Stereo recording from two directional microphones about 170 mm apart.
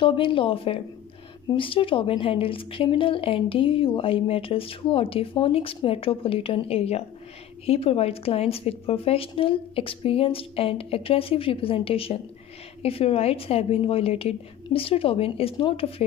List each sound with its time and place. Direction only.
0.0 s speech: 30° left (ahead or behind)